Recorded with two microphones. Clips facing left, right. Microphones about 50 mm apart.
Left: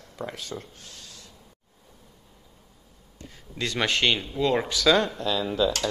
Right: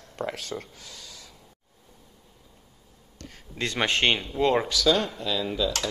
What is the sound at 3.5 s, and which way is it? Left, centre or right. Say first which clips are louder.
Speech: even; right.